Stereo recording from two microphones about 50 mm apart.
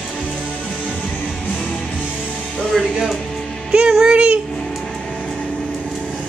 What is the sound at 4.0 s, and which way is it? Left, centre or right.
Music, right.